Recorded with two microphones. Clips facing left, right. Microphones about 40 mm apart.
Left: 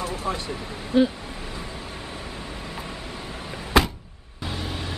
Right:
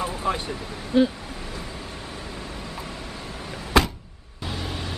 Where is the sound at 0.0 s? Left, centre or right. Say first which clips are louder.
Right 2 dB; right.